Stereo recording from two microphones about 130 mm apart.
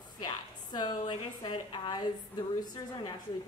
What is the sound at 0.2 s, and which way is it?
A woman's voice, 35° left (ahead or behind).